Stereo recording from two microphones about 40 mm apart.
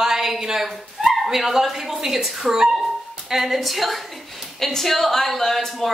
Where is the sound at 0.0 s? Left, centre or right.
Centre.